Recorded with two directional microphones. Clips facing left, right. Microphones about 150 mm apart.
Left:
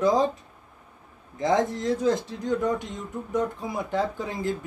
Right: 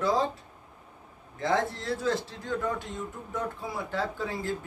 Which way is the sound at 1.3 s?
20° left (ahead or behind).